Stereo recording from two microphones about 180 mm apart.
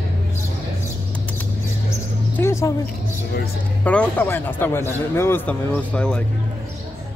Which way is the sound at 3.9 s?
10° left (ahead or behind).